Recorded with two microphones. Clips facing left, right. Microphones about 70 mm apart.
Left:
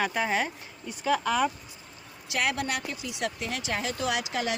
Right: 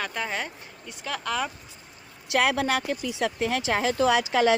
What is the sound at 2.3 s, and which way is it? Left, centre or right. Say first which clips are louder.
Speech: right 6 dB; right.